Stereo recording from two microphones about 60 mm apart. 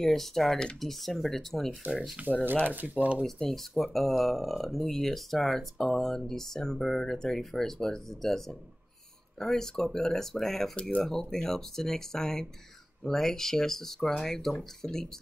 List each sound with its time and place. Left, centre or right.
0.0 s speech: centre
2.4 s speech: right
3.3 s speech: centre
10.8 s speech: centre